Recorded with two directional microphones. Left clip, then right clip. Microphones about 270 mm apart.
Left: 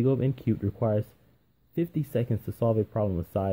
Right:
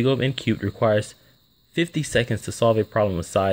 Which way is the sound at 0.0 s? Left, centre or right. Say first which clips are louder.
Right 5 dB; centre.